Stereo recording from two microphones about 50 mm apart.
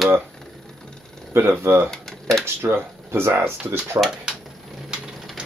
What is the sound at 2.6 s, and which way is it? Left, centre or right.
Speech, right.